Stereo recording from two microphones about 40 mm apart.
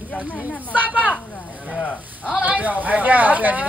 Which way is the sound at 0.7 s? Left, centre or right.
Right.